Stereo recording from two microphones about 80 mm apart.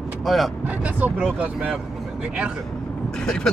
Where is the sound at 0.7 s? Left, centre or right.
Right.